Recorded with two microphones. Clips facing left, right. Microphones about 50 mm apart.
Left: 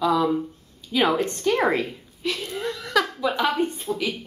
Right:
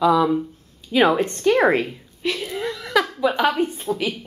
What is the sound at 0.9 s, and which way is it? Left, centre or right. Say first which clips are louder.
A woman's voice: right 4 dB; right.